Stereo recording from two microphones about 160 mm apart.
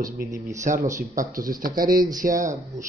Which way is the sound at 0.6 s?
50° right (ahead or behind).